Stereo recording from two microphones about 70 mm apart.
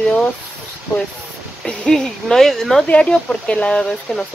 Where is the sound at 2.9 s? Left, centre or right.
Centre.